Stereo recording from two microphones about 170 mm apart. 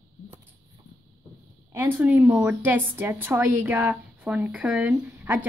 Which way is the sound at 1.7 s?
15° right (ahead or behind).